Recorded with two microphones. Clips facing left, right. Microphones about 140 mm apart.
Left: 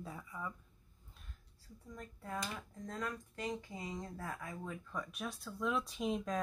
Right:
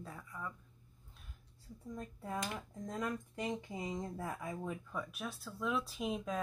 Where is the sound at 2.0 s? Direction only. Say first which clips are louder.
Right 2 dB; 20° right (ahead or behind).